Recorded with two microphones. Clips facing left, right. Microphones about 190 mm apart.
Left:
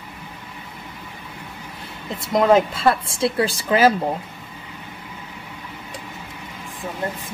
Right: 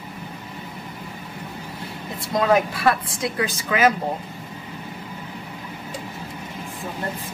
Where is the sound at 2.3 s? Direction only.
25° left (ahead or behind).